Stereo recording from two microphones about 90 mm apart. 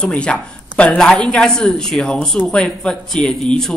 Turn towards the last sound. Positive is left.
turn(degrees=10)  # may be behind; listen again after turning